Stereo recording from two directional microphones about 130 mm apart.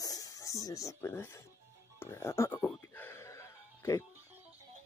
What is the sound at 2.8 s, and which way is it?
Music, 20° left (ahead or behind).